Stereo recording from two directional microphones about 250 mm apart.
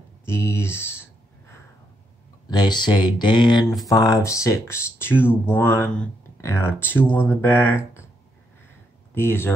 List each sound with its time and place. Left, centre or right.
0.2 s a sound: centre
2.5 s speech: centre
9.1 s speech: centre